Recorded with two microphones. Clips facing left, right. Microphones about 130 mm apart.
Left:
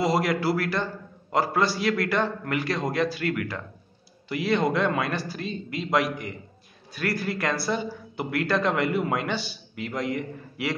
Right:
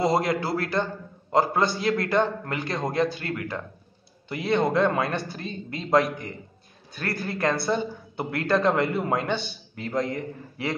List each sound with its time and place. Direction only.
0.0 s a man's voice: 25° right (ahead or behind)